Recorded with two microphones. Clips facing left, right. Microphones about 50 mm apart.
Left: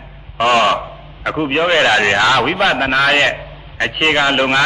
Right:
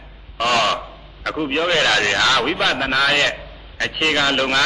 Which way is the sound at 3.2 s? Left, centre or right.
Left.